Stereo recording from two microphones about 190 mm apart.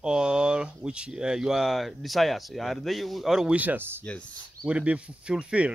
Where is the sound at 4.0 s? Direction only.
5° left (ahead or behind).